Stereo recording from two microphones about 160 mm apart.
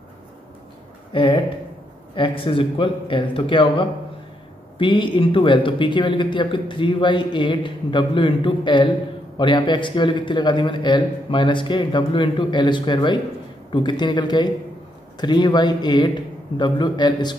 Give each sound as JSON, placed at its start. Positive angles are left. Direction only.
{"t": 1.1, "sound": "a man's voice", "side_deg": 30}